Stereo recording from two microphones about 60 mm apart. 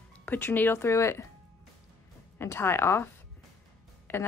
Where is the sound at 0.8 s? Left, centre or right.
Left.